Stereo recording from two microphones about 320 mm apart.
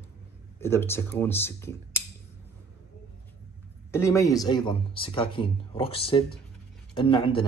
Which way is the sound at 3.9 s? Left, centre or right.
Centre.